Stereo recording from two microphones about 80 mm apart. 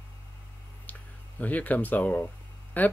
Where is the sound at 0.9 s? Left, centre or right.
Centre.